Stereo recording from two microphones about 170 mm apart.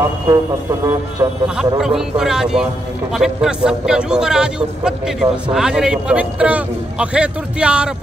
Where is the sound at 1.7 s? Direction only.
5° right (ahead or behind).